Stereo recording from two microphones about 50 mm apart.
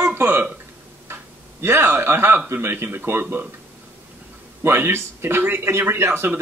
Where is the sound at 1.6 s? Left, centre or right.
Right.